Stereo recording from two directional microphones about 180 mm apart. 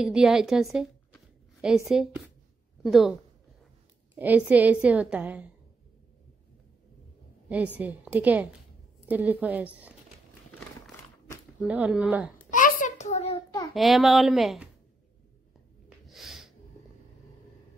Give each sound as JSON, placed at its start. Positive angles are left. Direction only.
{"t": 0.0, "sound": "a woman's voice", "side_deg": -5}
{"t": 2.8, "sound": "a woman's voice", "side_deg": 0}
{"t": 4.2, "sound": "a woman's voice", "side_deg": -10}
{"t": 7.4, "sound": "a woman's voice", "side_deg": -10}
{"t": 11.6, "sound": "a woman's voice", "side_deg": -5}
{"t": 12.4, "sound": "a sound", "side_deg": 45}
{"t": 13.7, "sound": "a woman's voice", "side_deg": 0}
{"t": 16.1, "sound": "snort", "side_deg": 0}